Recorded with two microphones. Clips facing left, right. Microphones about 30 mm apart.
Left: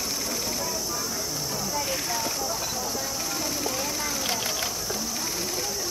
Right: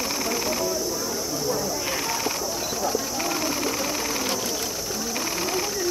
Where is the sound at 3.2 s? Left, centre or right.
Right.